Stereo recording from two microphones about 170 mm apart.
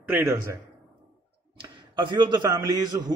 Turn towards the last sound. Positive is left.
turn(degrees=-25)  # may be behind; listen again after turning